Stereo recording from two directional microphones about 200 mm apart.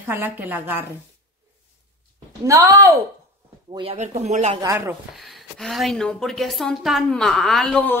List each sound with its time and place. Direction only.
0.0 s a woman's voice: 10° right (ahead or behind)
2.4 s a woman's voice: 15° right (ahead or behind)
3.7 s speech: 30° right (ahead or behind)
4.6 s a woman's voice: 15° right (ahead or behind)
5.1 s a woman's voice: centre (ahead or behind)